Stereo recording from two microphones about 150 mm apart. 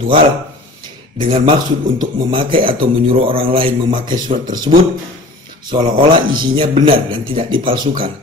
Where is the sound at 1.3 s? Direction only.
35° right (ahead or behind).